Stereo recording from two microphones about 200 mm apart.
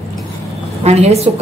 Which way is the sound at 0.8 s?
30° right (ahead or behind).